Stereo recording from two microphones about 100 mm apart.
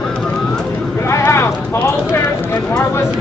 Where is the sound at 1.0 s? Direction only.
25° left (ahead or behind).